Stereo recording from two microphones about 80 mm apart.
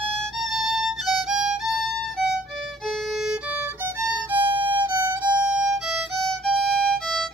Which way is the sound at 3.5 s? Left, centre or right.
Right.